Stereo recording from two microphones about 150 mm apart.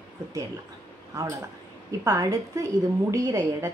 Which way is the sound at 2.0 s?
15° right (ahead or behind).